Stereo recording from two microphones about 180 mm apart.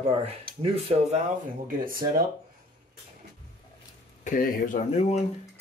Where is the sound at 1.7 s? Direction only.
50° right (ahead or behind).